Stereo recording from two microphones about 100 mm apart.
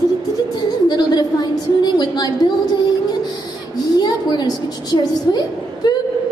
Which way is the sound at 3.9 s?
45° left (ahead or behind).